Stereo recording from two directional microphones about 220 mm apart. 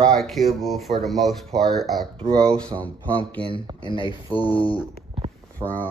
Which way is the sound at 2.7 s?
25° right (ahead or behind).